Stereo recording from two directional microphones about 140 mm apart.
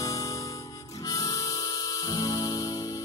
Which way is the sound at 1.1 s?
25° left (ahead or behind).